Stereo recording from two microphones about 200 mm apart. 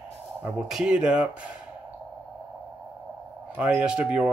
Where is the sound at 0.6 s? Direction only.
5° right (ahead or behind).